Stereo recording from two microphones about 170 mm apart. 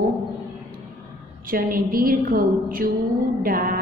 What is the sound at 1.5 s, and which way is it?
A woman's voice, 55° right (ahead or behind).